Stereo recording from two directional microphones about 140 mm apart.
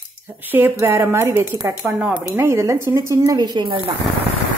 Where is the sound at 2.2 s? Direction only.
20° right (ahead or behind); by 3.9 s 35° right (ahead or behind).